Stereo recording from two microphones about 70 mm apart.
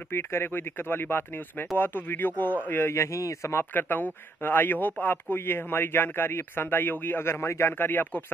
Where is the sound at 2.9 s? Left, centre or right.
Left.